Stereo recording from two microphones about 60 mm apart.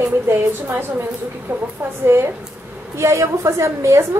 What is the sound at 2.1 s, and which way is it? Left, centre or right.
A woman's voice, right.